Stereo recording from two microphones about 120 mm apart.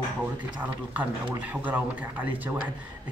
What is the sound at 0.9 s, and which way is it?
Speech, 10° right (ahead or behind).